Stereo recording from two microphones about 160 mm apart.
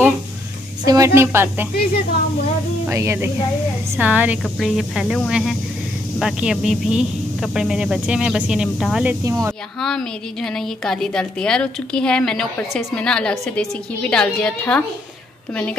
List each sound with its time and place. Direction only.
0.8 s speech: 20° right (ahead or behind)
2.9 s a woman's voice: 15° right (ahead or behind)
9.2 s speech: 20° right (ahead or behind)
9.8 s a woman's voice: 5° left (ahead or behind)